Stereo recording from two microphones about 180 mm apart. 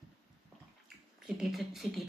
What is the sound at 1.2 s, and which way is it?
Speech, 5° right (ahead or behind).